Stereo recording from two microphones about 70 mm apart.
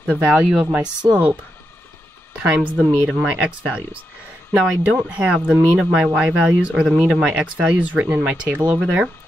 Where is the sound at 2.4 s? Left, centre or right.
Centre.